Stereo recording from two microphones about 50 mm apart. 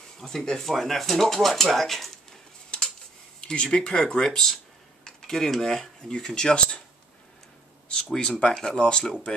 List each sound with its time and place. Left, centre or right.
0.2 s speech: centre
3.3 s a sound: centre
3.7 s speech: centre
5.0 s cutlery: centre
6.1 s speech: centre
7.9 s speech: centre